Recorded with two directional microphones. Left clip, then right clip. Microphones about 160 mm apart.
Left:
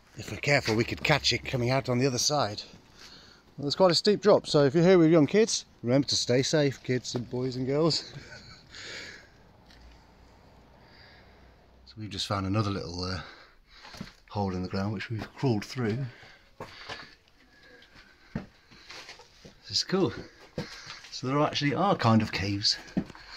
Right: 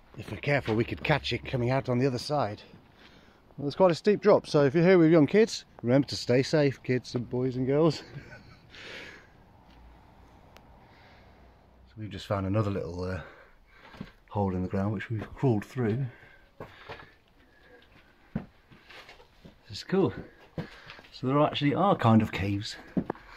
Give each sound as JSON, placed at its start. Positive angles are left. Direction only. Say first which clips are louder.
{"t": 0.2, "sound": "speech", "louder": "left 3 dB", "side_deg": 5}
{"t": 3.7, "sound": "speech", "louder": "left 1 dB", "side_deg": 0}
{"t": 5.0, "sound": "speech", "louder": "right 1 dB", "side_deg": -5}
{"t": 7.2, "sound": "speech", "louder": "right 2 dB", "side_deg": -20}
{"t": 11.9, "sound": "speech", "louder": "left 1 dB", "side_deg": -5}
{"t": 14.6, "sound": "speech", "louder": "right 1 dB", "side_deg": -20}
{"t": 15.8, "sound": "speech", "louder": "right 1 dB", "side_deg": -5}
{"t": 16.7, "sound": "sniff", "louder": "left 5 dB", "side_deg": -5}
{"t": 19.6, "sound": "speech", "louder": "left 1 dB", "side_deg": -5}
{"t": 21.2, "sound": "speech", "louder": "right 1 dB", "side_deg": -15}